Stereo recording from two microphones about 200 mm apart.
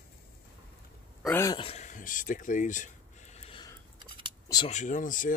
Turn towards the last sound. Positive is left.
turn(degrees=40)  # may be behind; listen again after turning